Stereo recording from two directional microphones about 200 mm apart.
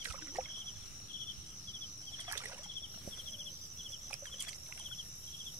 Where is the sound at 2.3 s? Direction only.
15° right (ahead or behind).